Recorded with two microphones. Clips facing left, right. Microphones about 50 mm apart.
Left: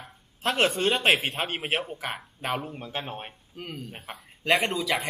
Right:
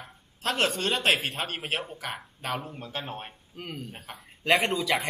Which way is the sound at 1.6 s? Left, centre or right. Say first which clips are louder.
Left 3 dB; centre.